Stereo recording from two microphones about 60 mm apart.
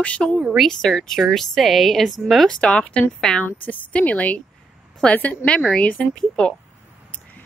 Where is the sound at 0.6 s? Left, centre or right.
Centre.